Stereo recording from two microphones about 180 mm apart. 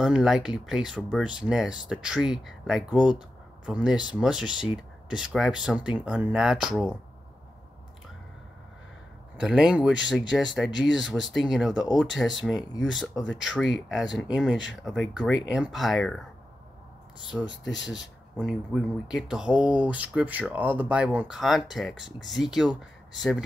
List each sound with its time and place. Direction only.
0.0 s speech: 5° right (ahead or behind)
9.4 s speech: 5° right (ahead or behind)
17.5 s speech: 90° left
17.8 s speech: centre (ahead or behind)